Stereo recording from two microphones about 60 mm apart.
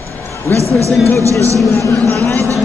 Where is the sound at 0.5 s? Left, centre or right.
Right.